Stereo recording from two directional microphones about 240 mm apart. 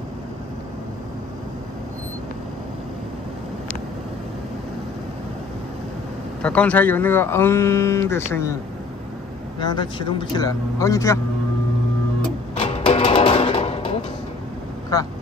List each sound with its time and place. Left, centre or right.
6.4 s speech: centre
9.6 s speech: centre
12.5 s music: left
14.9 s speech: centre